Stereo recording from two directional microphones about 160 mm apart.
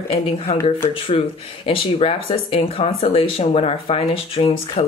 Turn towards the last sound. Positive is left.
turn(degrees=35)  # may be behind; listen again after turning